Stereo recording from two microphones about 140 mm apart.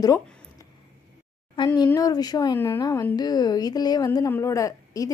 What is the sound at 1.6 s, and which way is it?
A woman's voice, 35° left (ahead or behind).